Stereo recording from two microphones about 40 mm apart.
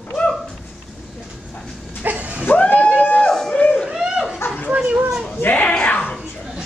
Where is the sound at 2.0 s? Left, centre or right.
Right.